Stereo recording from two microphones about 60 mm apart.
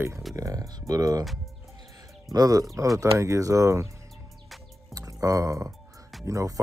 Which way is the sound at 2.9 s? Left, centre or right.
Right.